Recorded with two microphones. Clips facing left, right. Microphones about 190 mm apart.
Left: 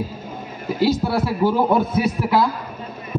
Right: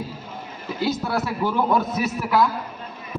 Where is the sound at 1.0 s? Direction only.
30° left (ahead or behind).